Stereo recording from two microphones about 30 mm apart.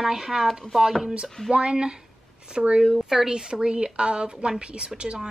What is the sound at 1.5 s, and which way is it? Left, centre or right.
A woman's voice, right.